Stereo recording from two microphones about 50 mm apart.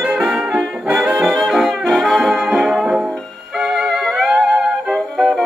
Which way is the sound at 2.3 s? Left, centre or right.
Centre.